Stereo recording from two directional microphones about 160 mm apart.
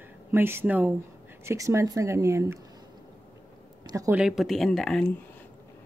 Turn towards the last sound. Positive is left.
turn(degrees=0)  # may be behind; listen again after turning